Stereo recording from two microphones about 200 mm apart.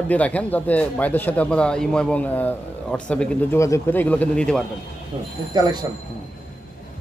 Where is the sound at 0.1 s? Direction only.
5° left (ahead or behind).